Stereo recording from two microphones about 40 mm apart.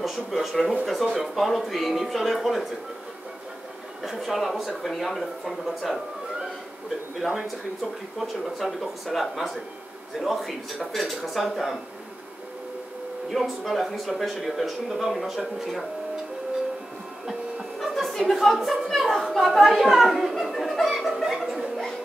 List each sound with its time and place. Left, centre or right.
0.0 s speech: centre
4.0 s speech: centre
8.2 s speech: centre
13.3 s speech: centre
17.7 s chuckle: centre
18.3 s speech: centre
21.4 s chuckle: centre